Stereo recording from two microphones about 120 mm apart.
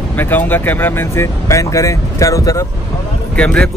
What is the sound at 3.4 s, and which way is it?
Speech, 10° left (ahead or behind).